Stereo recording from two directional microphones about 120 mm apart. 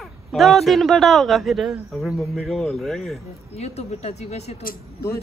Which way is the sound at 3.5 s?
60° left (ahead or behind).